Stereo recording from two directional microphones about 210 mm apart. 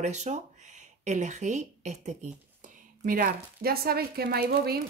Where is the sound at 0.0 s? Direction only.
35° right (ahead or behind).